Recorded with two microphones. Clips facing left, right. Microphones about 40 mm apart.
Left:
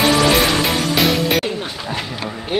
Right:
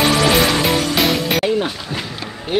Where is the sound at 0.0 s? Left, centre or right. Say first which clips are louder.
Even; centre.